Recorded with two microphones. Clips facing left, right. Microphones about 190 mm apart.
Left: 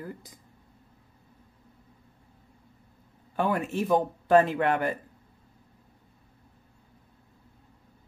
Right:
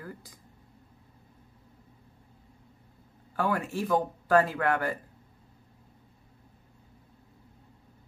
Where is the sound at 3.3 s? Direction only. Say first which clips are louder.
Left 2 dB; 20° left (ahead or behind).